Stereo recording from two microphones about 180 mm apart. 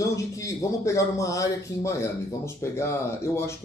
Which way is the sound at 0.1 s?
15° left (ahead or behind).